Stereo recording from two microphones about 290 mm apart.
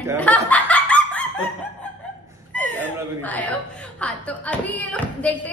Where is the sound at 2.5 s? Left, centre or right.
Centre.